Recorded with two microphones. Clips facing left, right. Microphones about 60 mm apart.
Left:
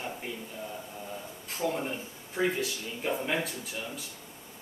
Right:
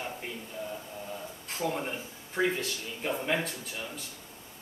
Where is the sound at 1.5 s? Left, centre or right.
Centre.